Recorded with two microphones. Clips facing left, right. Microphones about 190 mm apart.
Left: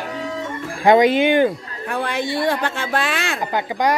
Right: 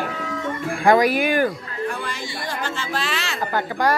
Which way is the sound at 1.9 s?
60° left (ahead or behind).